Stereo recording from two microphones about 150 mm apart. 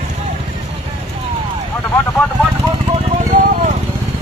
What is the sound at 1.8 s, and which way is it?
Vehicle, 10° left (ahead or behind).